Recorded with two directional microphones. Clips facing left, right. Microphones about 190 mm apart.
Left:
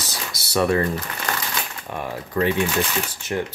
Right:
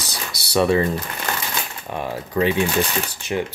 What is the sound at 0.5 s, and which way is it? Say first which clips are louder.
Speech: right 2 dB; 20° right (ahead or behind).